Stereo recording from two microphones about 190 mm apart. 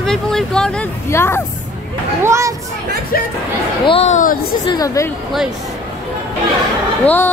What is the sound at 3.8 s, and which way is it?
Speech, 30° left (ahead or behind).